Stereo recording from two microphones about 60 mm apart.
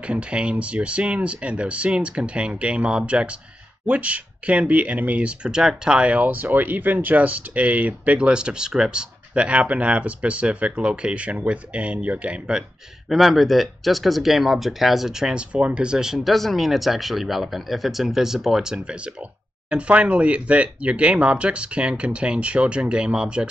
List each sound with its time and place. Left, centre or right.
0.0 s speech: centre
13.1 s speech: centre